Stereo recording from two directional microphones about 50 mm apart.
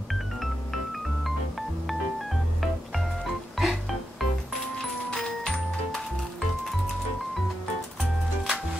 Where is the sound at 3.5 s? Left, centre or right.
Centre.